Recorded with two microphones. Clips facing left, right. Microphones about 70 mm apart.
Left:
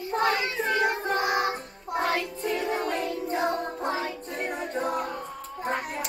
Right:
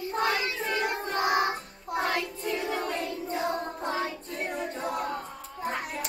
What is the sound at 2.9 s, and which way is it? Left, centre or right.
Music, left.